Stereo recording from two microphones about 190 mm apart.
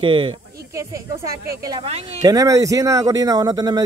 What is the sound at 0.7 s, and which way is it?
Speech, 15° right (ahead or behind).